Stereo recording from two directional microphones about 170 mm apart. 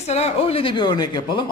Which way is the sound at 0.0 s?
40° left (ahead or behind).